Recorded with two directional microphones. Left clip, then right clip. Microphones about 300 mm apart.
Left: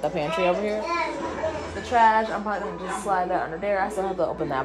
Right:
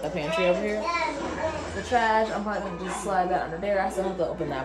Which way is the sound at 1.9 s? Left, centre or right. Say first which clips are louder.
Left 5 dB; centre.